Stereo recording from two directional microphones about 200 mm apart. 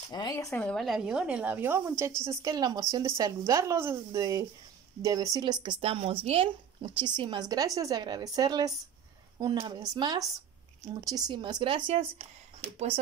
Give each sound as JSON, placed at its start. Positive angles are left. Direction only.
{"t": 0.1, "sound": "a woman's voice", "side_deg": 20}